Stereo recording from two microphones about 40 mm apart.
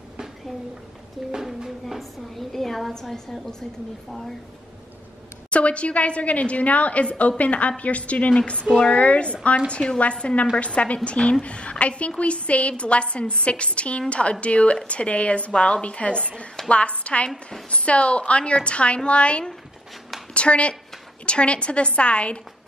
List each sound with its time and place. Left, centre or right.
1.3 s speech: centre
1.9 s a woman's voice: centre
5.5 s a woman's voice: left